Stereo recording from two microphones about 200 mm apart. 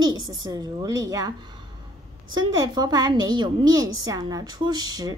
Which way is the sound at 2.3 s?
20° right (ahead or behind).